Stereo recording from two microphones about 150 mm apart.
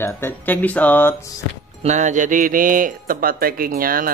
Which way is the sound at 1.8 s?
50° right (ahead or behind).